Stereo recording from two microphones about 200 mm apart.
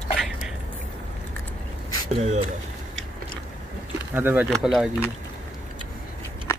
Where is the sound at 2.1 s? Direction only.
35° right (ahead or behind).